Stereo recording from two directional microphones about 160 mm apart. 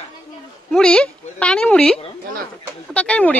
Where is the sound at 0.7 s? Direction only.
5° left (ahead or behind).